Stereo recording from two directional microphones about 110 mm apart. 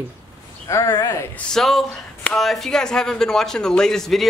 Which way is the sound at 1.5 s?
Centre (ahead or behind).